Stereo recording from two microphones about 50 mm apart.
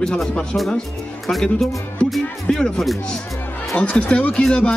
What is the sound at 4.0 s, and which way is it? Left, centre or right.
Speech, left.